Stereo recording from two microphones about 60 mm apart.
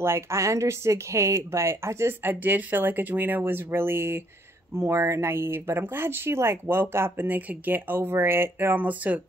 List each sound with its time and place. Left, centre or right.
0.0 s speech: right
2.2 s speech: right
4.7 s speech: right